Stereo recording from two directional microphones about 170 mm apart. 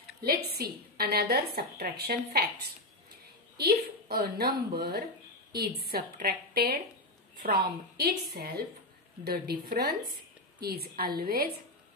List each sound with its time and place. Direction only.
0.2 s a woman's voice: 65° right (ahead or behind)